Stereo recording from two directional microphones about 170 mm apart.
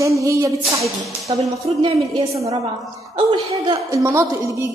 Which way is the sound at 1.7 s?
35° right (ahead or behind).